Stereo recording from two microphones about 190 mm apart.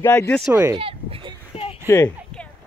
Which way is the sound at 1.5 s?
30° left (ahead or behind).